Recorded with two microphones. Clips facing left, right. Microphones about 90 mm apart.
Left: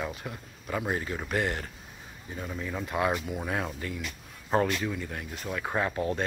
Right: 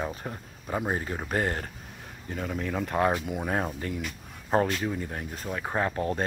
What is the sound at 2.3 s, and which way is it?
Speech, 55° right (ahead or behind).